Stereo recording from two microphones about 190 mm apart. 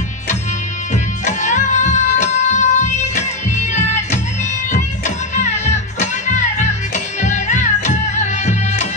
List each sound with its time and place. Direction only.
1.2 s music: 40° left (ahead or behind)